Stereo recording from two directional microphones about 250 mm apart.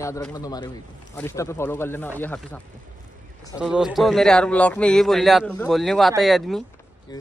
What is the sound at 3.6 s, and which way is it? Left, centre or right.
A man's voice, centre.